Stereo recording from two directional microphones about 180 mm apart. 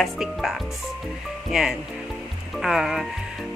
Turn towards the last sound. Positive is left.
turn(degrees=0)  # may be behind; listen again after turning